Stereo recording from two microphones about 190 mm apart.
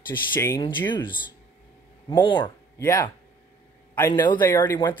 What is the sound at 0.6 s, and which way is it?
Speech, 25° left (ahead or behind).